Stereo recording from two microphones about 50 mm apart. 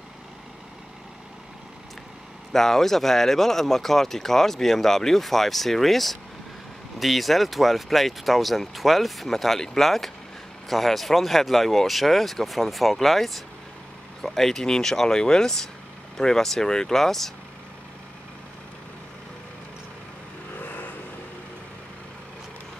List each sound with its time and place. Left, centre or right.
2.5 s speech: centre
20.5 s vehicle: left